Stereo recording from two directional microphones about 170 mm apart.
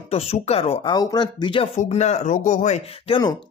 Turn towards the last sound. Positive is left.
turn(degrees=35)  # may be behind; listen again after turning